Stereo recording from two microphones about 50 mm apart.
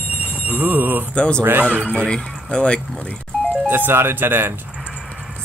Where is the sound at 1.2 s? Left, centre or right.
Centre.